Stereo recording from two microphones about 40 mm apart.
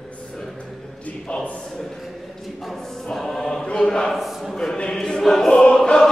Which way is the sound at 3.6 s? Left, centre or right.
Left.